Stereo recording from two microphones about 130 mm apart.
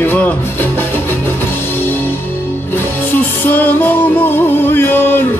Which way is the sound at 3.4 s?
15° left (ahead or behind).